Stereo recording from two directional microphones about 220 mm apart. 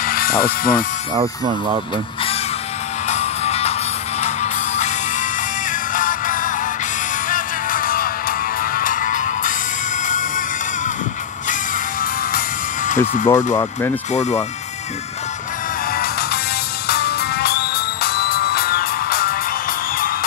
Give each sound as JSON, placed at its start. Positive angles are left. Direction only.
{"t": 0.0, "sound": "music", "side_deg": 40}
{"t": 1.1, "sound": "speech", "side_deg": -20}
{"t": 3.1, "sound": "music", "side_deg": 30}
{"t": 5.9, "sound": "music", "side_deg": 35}
{"t": 12.0, "sound": "music", "side_deg": 40}
{"t": 16.8, "sound": "music", "side_deg": 45}